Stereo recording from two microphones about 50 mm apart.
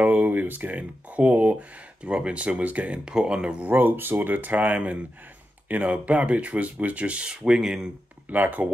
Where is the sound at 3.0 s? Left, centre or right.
Centre.